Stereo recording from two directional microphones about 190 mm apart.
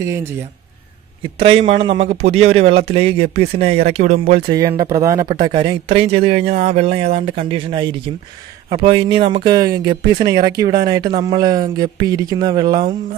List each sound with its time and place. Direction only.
1.4 s speech: 30° right (ahead or behind)
4.5 s speech: 20° right (ahead or behind)